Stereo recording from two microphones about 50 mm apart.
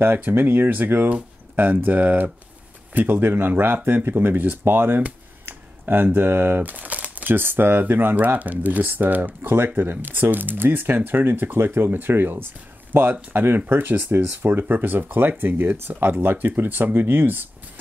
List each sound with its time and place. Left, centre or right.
0.0 s speech: right
5.0 s computer keyboard: right
7.3 s speech: right
14.0 s speech: right
14.4 s speech: right